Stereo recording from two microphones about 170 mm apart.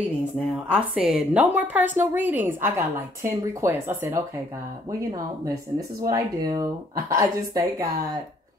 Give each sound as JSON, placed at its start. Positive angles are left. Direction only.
{"t": 0.7, "sound": "a woman's voice", "side_deg": -5}
{"t": 6.0, "sound": "speech", "side_deg": -20}